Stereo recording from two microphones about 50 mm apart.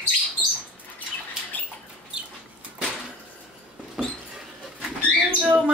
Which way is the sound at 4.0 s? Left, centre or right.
Centre.